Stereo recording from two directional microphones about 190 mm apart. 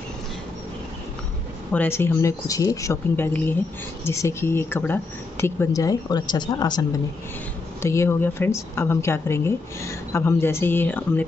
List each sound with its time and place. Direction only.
1.7 s speech: 10° left (ahead or behind)
7.8 s speech: 15° left (ahead or behind)